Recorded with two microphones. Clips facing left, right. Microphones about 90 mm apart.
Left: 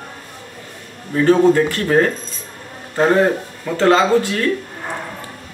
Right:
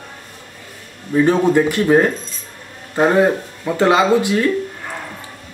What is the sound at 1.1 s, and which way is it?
Speech, 10° right (ahead or behind).